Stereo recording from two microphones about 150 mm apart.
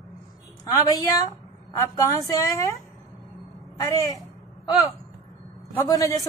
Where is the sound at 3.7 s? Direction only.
25° left (ahead or behind).